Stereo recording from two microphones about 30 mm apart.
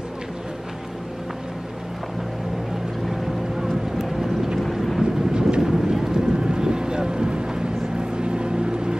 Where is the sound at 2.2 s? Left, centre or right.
Centre.